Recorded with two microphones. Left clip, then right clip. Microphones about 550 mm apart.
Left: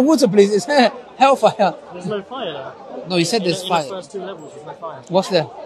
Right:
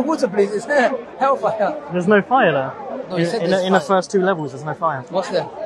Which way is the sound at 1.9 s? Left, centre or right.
Right.